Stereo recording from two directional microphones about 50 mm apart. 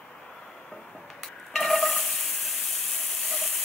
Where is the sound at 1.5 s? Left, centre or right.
Centre.